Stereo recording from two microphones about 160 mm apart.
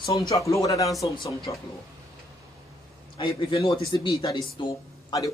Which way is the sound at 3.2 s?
30° left (ahead or behind).